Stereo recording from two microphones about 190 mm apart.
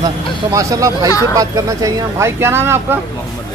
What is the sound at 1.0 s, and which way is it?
Speech, 20° left (ahead or behind).